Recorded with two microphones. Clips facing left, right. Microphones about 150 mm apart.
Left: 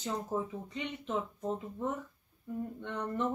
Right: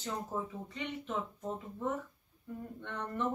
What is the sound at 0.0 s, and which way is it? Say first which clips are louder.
Speech: left 3 dB; 15° left (ahead or behind).